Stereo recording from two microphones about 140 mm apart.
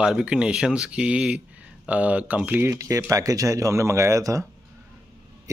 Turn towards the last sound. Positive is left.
turn(degrees=-25)  # may be behind; listen again after turning